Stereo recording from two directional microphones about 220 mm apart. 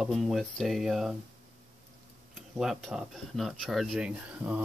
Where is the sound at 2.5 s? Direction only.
Centre (ahead or behind).